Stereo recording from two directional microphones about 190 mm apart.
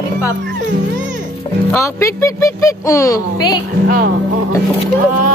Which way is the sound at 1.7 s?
15° left (ahead or behind).